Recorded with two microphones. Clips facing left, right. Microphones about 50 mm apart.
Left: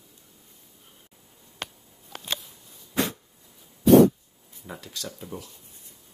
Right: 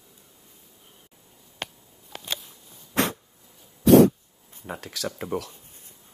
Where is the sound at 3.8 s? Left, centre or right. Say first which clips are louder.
Even; right.